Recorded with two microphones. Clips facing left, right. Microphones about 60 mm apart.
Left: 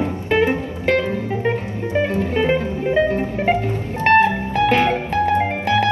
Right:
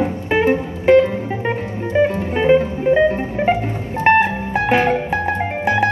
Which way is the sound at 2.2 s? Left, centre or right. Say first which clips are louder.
Right 4 dB; right.